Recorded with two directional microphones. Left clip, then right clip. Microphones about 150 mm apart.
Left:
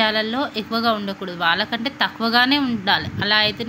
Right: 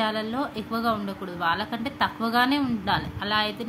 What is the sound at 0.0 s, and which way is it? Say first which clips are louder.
Speech: left 7 dB; 25° left (ahead or behind).